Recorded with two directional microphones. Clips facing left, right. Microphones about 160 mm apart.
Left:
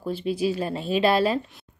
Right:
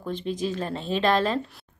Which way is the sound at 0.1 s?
10° left (ahead or behind).